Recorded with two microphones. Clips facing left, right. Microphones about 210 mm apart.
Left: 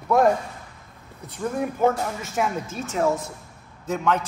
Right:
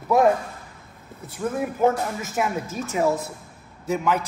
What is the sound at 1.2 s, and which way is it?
A man's voice, 5° right (ahead or behind).